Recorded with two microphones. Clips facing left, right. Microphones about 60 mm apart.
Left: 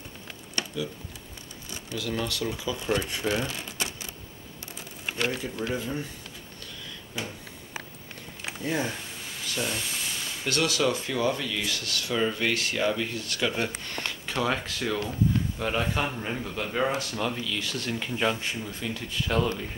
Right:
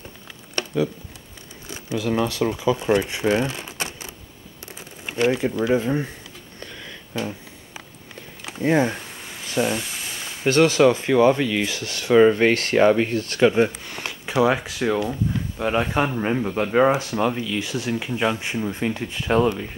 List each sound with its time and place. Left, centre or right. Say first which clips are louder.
1.7 s speech: right 8 dB; right
3.3 s cash register: right 8 dB; right
5.2 s speech: right 10 dB; right
8.6 s a sound: right 10 dB; right
10.4 s speech: right 10 dB; right
12.2 s speech: right 12 dB; right
13.8 s speech: right 2 dB; centre
18.5 s speech: right 8 dB; right